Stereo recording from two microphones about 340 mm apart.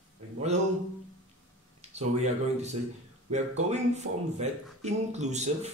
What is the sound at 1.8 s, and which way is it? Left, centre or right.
Speech, centre.